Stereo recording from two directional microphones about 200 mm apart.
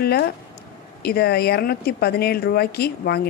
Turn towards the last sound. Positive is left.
turn(degrees=50)  # may be behind; listen again after turning